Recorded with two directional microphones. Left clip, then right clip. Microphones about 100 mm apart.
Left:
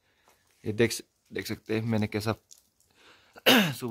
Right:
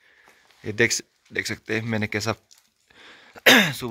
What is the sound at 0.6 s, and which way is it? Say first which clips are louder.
Speech: right 5 dB; 30° left (ahead or behind).